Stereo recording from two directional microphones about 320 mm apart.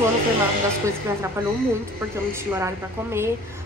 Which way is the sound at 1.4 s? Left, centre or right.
Centre.